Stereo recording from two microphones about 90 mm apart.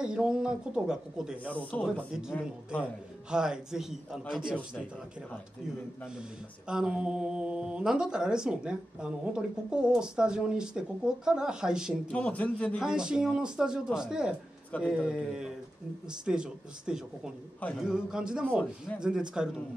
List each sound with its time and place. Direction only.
0.0 s speech: 10° right (ahead or behind)
1.4 s a man's voice: 15° left (ahead or behind)
3.3 s speech: 10° right (ahead or behind)
6.7 s speech: 10° right (ahead or behind)
12.1 s a man's voice: 15° left (ahead or behind)
12.7 s speech: 5° right (ahead or behind)